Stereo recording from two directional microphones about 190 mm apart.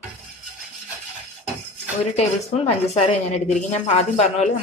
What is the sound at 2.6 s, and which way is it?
A woman's voice, 30° left (ahead or behind).